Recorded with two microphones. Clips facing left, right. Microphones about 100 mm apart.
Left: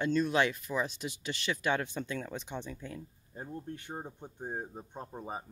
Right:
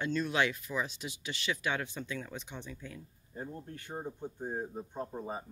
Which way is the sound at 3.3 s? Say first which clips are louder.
Left 1 dB; 20° left (ahead or behind).